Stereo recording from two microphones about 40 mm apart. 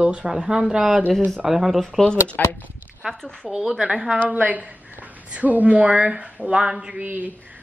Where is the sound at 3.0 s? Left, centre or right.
Centre.